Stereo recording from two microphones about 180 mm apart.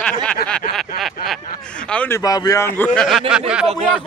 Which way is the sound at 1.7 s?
5° left (ahead or behind).